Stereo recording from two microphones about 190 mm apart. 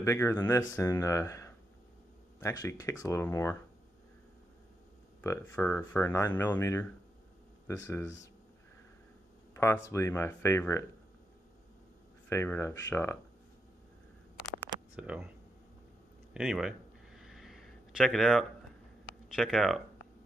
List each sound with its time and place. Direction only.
0.0 s speech: 15° left (ahead or behind)
5.2 s speech: 15° left (ahead or behind)
9.8 s speech: 15° left (ahead or behind)
12.3 s speech: 15° left (ahead or behind)
15.0 s speech: 5° right (ahead or behind)
16.3 s a sound: 5° right (ahead or behind)
19.3 s speech: centre (ahead or behind)